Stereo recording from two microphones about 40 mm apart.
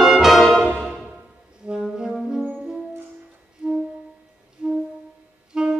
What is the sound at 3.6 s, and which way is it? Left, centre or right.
Music, right.